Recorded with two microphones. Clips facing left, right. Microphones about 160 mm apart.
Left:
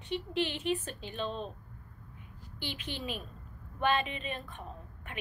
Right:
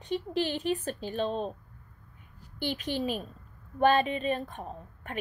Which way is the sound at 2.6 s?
40° right (ahead or behind).